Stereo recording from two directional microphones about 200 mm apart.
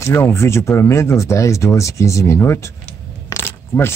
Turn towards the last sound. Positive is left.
turn(degrees=10)  # may be behind; listen again after turning